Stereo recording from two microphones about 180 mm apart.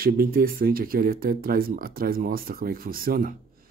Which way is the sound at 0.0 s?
55° right (ahead or behind).